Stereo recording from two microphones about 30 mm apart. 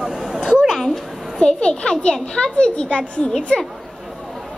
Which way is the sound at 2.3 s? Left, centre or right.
Left.